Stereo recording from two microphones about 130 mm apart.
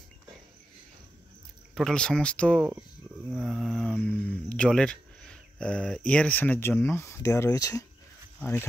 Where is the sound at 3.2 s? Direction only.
5° right (ahead or behind).